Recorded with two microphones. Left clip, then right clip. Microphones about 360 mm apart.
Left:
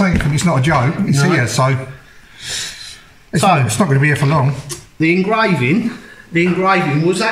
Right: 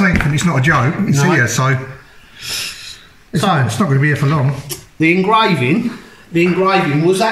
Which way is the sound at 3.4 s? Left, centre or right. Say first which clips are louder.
Left 3 dB; centre.